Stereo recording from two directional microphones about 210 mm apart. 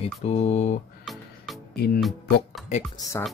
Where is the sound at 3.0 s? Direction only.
15° left (ahead or behind).